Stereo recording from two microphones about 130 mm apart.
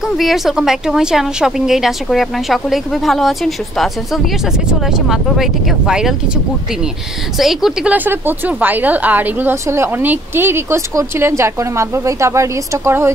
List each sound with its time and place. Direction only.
0.0 s a woman's voice: centre (ahead or behind); by 13.1 s 20° right (ahead or behind)